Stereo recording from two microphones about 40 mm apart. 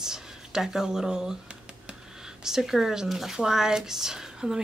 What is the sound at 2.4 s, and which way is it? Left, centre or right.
A woman's voice, centre.